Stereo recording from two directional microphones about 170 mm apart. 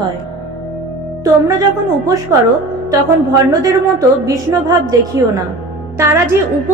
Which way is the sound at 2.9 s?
20° right (ahead or behind).